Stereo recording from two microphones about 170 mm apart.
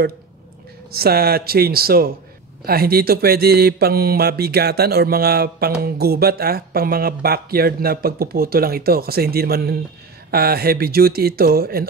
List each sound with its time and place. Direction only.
0.9 s mantra: 65° right (ahead or behind)